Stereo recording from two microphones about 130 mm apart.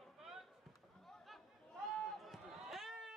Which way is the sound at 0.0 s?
Centre (ahead or behind).